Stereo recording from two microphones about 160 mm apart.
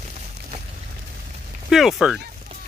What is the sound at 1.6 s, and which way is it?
Speech, centre (ahead or behind).